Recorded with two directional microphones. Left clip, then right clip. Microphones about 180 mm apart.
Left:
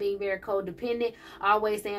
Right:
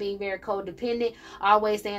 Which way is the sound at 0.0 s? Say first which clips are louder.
Left 1 dB; 35° right (ahead or behind).